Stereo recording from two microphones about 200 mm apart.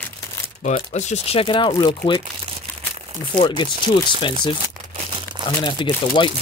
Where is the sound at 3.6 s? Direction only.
25° left (ahead or behind).